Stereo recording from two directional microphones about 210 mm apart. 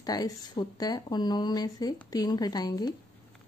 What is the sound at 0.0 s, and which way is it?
Speech, 20° left (ahead or behind).